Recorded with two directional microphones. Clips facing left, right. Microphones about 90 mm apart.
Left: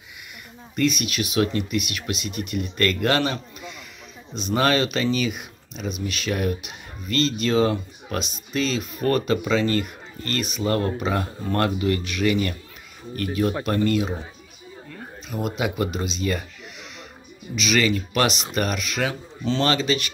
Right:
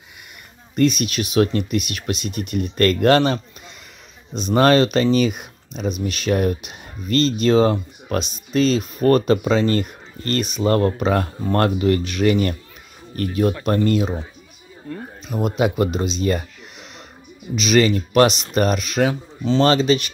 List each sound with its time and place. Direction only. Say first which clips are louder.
0.7 s speech: right 5 dB; 35° right (ahead or behind)
4.4 s speech: right 6 dB; 40° right (ahead or behind)
15.6 s speech: right 7 dB; 35° right (ahead or behind)
17.6 s speech: right 5 dB; 30° right (ahead or behind)